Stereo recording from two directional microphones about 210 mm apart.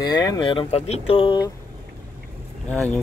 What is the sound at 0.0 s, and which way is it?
Speech, 20° left (ahead or behind).